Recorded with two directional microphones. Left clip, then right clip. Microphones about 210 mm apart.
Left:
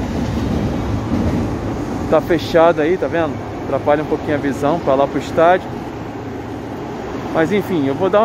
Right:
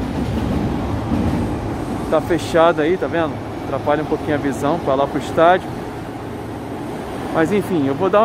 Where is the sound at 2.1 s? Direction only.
10° left (ahead or behind).